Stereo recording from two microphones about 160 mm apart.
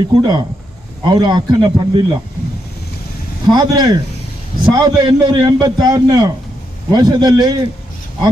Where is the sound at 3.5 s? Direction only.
25° right (ahead or behind).